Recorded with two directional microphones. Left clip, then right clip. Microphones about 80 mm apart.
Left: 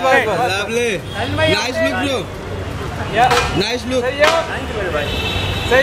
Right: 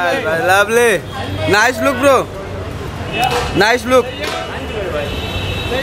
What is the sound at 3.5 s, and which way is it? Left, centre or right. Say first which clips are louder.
Speech: right 7 dB; right.